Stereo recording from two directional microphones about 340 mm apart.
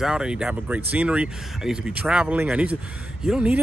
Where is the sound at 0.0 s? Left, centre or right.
Centre.